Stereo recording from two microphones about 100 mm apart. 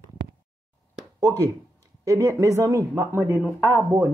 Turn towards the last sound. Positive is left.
turn(degrees=-25)  # may be behind; listen again after turning